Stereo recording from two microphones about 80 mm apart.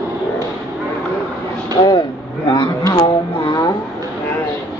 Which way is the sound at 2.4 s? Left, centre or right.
Left.